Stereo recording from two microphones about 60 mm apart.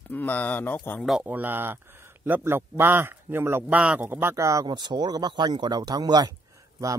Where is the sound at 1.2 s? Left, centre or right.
Right.